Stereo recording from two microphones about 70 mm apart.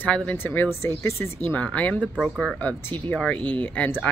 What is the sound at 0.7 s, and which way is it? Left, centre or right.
Speech, left.